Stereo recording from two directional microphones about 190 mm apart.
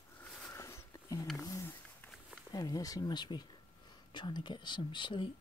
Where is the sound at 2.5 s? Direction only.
20° left (ahead or behind).